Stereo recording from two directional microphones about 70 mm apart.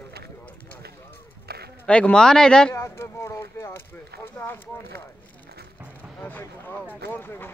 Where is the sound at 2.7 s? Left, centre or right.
Left.